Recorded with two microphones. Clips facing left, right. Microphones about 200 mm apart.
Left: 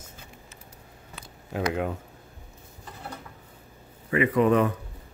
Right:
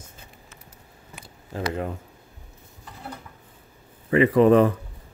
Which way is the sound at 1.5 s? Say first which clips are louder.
Left 1 dB; 5° left (ahead or behind).